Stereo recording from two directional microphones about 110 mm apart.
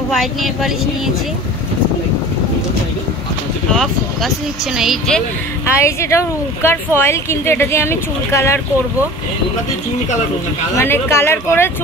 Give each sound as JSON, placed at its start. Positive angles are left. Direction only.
{"t": 0.1, "sound": "speech", "side_deg": 0}
{"t": 3.7, "sound": "speech", "side_deg": 5}
{"t": 5.8, "sound": "speech", "side_deg": 25}
{"t": 10.8, "sound": "speech", "side_deg": 25}